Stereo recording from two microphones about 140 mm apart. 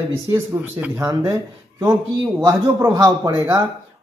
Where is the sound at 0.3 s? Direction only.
15° right (ahead or behind).